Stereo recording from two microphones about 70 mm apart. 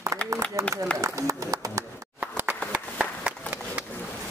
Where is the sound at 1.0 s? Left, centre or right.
Right.